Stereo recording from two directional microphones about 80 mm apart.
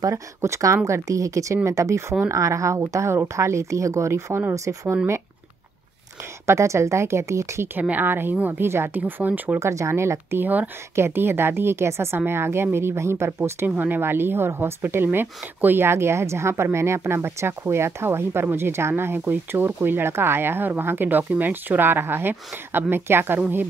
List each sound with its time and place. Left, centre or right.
0.0 s speech: right
6.4 s a woman's voice: right
9.6 s a woman's voice: right
13.7 s a woman's voice: right